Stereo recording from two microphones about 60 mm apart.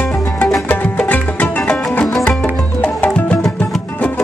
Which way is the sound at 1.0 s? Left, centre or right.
Left.